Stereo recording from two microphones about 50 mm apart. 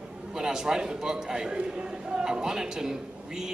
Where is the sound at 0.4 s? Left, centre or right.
Centre.